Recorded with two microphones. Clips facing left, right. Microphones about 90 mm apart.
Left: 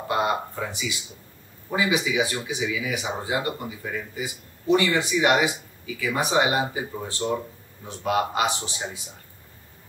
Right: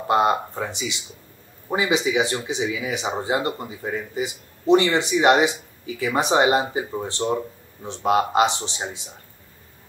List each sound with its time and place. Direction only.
0.1 s speech: 30° right (ahead or behind)